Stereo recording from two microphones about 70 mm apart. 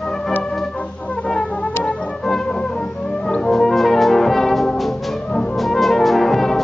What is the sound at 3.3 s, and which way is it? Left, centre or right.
Brass instrument, centre.